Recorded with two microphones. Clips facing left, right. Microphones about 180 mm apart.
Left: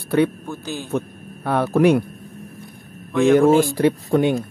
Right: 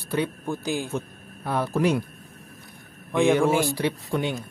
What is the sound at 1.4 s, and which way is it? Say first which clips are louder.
Speech: left 7 dB; 65° left (ahead or behind).